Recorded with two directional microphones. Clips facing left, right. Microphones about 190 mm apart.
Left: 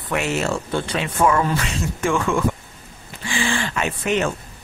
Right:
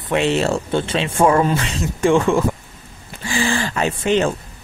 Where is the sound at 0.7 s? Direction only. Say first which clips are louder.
Right 4 dB; 25° right (ahead or behind).